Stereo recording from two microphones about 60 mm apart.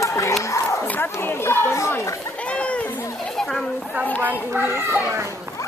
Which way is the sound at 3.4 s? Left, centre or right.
Centre.